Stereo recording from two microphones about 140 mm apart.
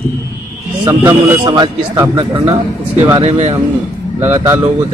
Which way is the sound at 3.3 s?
55° right (ahead or behind).